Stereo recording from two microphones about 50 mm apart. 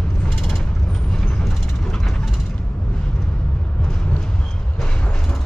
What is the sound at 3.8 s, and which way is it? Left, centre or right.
Vehicle, centre.